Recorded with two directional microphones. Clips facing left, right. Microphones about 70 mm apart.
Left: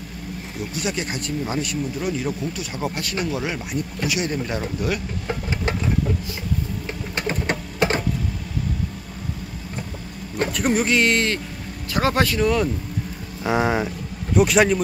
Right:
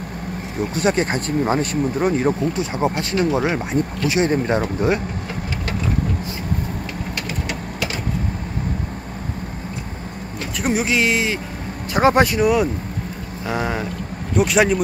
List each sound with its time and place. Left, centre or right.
0.6 s speech: right
7.2 s a sound: left
10.6 s speech: centre
11.9 s speech: right
13.5 s speech: centre
14.3 s speech: centre